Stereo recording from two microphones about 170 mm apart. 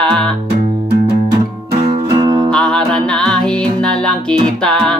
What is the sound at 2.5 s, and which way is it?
Music, 5° left (ahead or behind).